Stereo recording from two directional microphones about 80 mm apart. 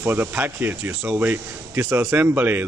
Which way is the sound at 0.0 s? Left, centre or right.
Right.